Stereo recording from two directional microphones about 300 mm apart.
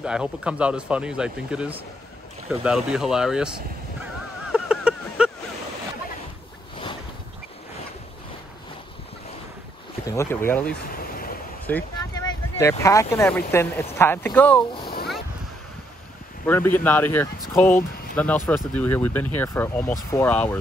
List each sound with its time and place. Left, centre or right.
0.0 s speech: centre
4.0 s a sound: centre
10.0 s speech: centre
11.0 s a sound: left
11.6 s speech: centre
16.4 s speech: centre